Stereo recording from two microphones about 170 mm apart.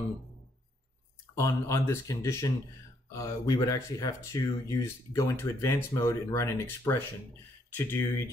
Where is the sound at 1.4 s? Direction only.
15° left (ahead or behind).